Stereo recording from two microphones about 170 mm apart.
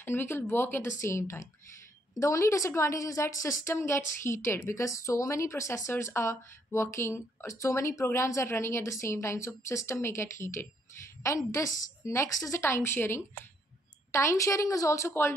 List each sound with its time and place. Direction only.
0.0 s speech: 15° left (ahead or behind)